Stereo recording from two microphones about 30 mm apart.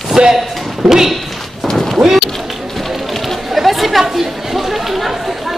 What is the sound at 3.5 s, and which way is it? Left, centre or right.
Chatter, centre.